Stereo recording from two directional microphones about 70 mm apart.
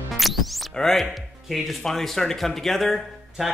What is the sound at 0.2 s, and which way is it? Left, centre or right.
Music, centre.